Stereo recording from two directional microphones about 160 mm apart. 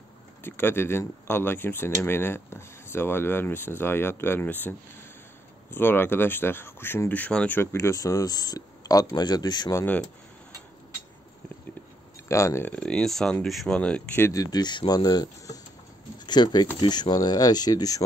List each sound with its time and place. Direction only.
0.4 s speech: 15° left (ahead or behind)
12.3 s speech: 20° left (ahead or behind)